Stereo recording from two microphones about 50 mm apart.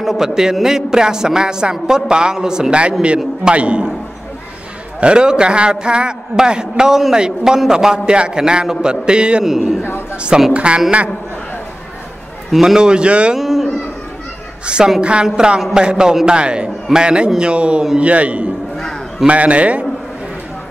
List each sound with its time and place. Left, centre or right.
0.0 s a man's voice: centre; by 3.8 s right
5.0 s a man's voice: centre
9.4 s a man's voice: centre
10.5 s a man's voice: right
12.4 s a man's voice: centre
13.4 s a sound: centre
15.0 s a man's voice: right